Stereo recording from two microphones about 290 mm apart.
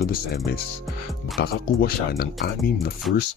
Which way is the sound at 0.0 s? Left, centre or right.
Left.